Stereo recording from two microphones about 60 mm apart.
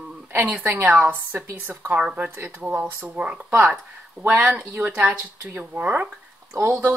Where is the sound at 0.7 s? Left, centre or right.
Right.